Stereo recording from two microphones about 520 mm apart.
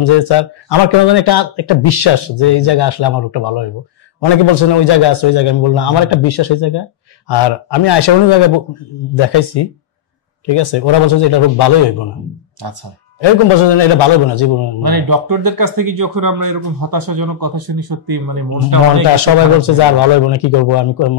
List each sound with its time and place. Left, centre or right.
0.0 s a man's voice: left
2.1 s a man's voice: left
12.6 s speech: right
13.6 s a man's voice: left
14.8 s speech: right
19.1 s a man's voice: left